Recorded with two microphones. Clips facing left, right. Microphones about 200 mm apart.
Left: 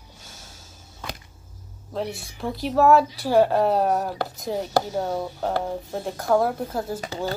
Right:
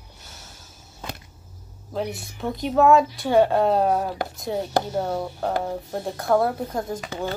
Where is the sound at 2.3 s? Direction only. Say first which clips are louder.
Right 1 dB; centre (ahead or behind).